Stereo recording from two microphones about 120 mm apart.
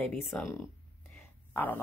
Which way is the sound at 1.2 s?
15° left (ahead or behind).